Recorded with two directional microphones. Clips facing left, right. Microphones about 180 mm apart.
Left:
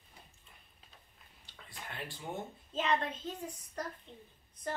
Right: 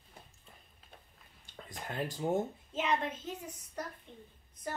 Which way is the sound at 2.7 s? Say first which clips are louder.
Even; 10° right (ahead or behind).